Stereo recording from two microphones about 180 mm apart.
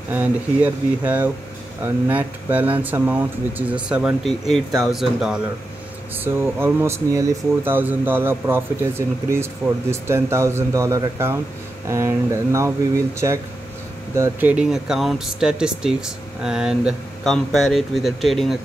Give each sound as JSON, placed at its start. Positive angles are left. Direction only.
{"t": 0.1, "sound": "speech", "side_deg": -10}
{"t": 12.5, "sound": "speech", "side_deg": -15}